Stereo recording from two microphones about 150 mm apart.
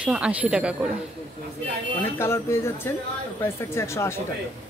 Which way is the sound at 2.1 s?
15° left (ahead or behind).